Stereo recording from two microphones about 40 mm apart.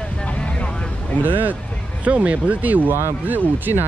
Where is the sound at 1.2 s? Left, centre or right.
Right.